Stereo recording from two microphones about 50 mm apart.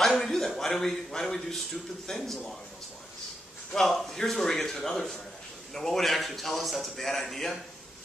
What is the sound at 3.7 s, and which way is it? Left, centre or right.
A man's voice, centre.